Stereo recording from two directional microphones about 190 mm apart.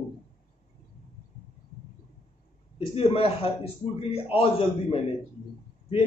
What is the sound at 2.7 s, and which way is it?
A man's voice, 30° left (ahead or behind).